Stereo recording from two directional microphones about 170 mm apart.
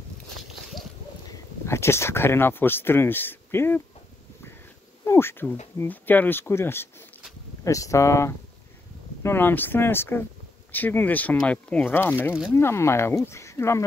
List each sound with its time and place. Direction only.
1.3 s speech: 15° left (ahead or behind)
5.0 s speech: 15° left (ahead or behind)